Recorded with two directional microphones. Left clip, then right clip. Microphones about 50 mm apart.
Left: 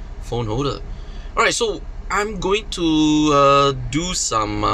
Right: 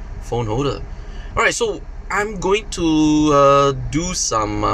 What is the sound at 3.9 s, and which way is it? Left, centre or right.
Speech, centre.